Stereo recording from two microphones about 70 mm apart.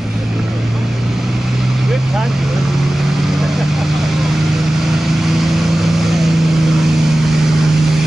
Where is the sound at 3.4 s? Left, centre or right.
Centre.